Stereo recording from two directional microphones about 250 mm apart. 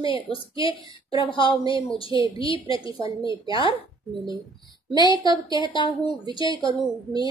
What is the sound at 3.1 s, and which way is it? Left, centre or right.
Speech, centre.